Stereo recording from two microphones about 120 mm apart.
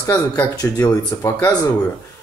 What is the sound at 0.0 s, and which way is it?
Speech, 25° left (ahead or behind).